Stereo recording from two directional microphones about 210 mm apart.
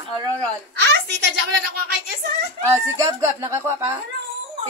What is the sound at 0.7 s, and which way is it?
Speech, 55° right (ahead or behind).